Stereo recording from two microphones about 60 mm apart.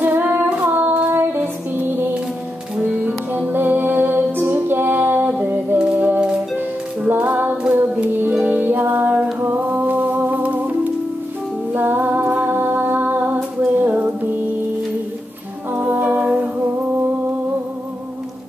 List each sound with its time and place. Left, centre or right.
0.1 s female singing: right
0.5 s music: right
2.8 s music: right
8.6 s music: right
15.8 s music: right